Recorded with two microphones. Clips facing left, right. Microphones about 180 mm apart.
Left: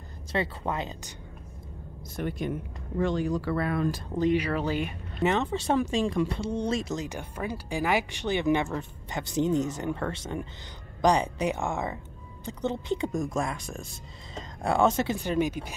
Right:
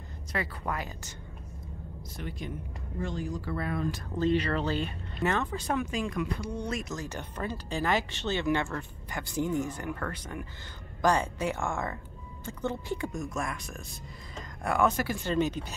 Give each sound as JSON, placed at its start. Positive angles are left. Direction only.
{"t": 0.3, "sound": "speech", "side_deg": 25}
{"t": 2.1, "sound": "speech", "side_deg": 55}
{"t": 3.0, "sound": "speech", "side_deg": 75}
{"t": 4.2, "sound": "speech", "side_deg": 10}
{"t": 7.1, "sound": "speech", "side_deg": 10}
{"t": 15.2, "sound": "speech", "side_deg": 10}